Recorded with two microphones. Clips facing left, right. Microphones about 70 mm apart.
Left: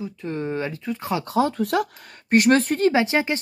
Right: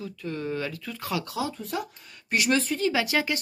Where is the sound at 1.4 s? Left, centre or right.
Left.